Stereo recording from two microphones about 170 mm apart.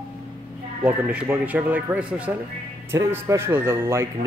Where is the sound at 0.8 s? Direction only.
10° right (ahead or behind).